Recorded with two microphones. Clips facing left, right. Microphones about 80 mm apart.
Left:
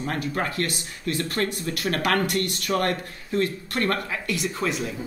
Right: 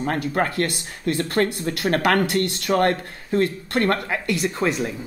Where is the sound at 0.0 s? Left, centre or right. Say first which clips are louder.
Right 5 dB; right.